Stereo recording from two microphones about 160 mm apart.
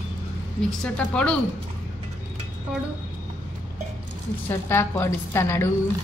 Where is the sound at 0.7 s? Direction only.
5° left (ahead or behind).